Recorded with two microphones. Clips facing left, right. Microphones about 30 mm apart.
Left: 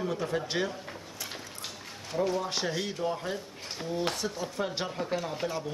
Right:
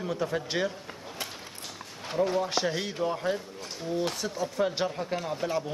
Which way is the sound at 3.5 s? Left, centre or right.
Centre.